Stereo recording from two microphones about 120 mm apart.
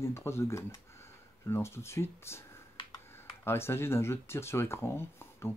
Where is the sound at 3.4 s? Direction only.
20° left (ahead or behind).